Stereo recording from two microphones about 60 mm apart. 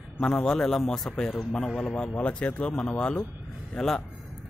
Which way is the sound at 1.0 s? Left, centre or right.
Centre.